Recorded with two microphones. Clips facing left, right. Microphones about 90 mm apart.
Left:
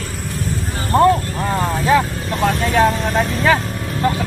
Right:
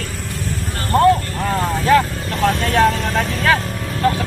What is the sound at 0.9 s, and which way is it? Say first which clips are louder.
Speech: even; 10° left (ahead or behind).